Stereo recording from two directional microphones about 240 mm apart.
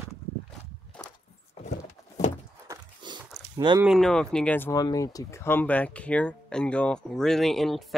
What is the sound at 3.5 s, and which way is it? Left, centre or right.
Speech, centre.